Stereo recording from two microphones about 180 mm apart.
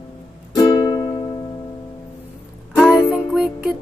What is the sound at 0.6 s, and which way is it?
Music, 25° left (ahead or behind).